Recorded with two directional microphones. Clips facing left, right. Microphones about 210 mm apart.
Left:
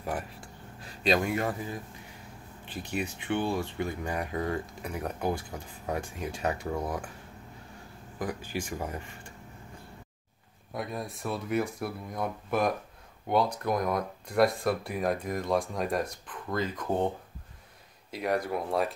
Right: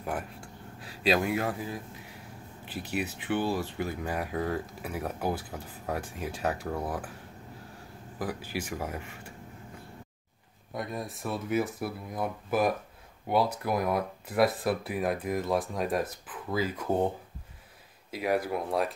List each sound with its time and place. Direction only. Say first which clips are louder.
0.0 s speech: even; centre (ahead or behind)
8.2 s speech: even; 5° right (ahead or behind)
10.7 s speech: even; centre (ahead or behind)
18.1 s speech: right 1 dB; 5° right (ahead or behind)